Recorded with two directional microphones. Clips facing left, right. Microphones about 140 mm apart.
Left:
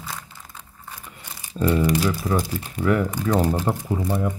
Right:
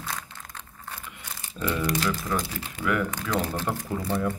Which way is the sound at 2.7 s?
35° left (ahead or behind).